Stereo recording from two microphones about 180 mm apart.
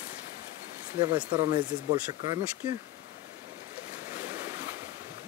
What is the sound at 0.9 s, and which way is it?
Speech, 25° right (ahead or behind).